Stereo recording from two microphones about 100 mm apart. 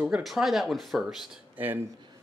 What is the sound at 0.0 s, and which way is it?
Speech, 5° right (ahead or behind).